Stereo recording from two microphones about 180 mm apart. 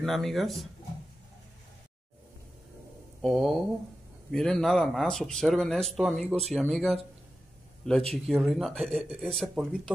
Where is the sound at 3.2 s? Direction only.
Centre (ahead or behind).